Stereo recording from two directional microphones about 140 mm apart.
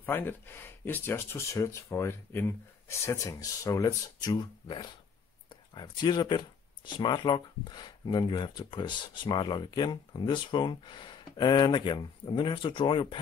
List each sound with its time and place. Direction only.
0.0 s speech: 15° left (ahead or behind); by 13.2 s 35° left (ahead or behind)